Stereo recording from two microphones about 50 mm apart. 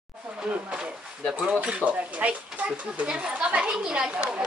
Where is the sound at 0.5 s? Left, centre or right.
Right.